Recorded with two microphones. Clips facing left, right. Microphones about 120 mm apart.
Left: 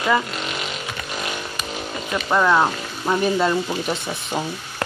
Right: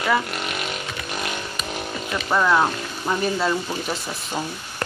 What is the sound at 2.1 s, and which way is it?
Speech, 10° left (ahead or behind).